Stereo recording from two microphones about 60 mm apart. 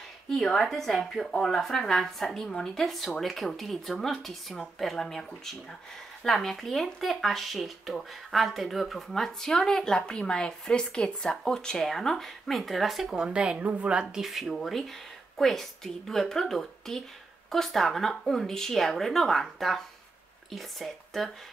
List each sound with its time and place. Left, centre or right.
0.3 s speech: centre
13.1 s a woman's voice: centre
14.2 s speech: centre